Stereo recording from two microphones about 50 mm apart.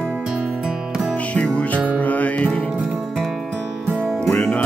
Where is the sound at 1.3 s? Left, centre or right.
Left.